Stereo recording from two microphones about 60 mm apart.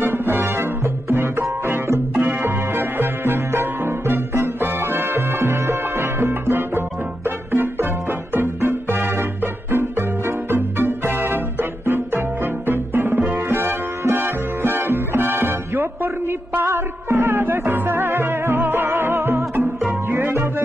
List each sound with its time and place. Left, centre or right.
0.0 s music: right
2.1 s music: right